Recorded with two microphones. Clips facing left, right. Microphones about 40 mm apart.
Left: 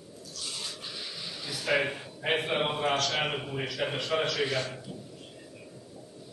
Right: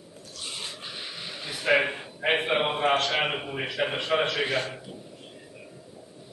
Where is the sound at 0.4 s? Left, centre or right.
Right.